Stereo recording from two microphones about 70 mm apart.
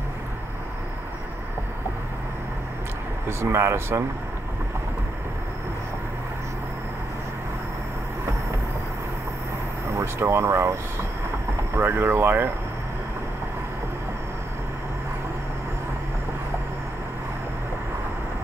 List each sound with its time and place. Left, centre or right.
3.3 s speech: right
9.9 s speech: right